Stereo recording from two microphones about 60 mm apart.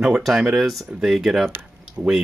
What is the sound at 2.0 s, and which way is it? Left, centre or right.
Speech, right.